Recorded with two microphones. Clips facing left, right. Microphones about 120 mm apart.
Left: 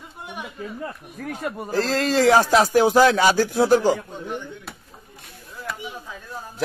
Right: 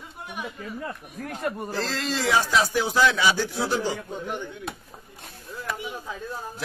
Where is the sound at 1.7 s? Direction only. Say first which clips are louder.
Left 8 dB; 45° left (ahead or behind).